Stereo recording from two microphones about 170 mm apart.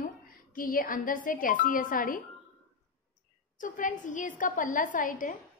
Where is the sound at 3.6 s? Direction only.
50° left (ahead or behind).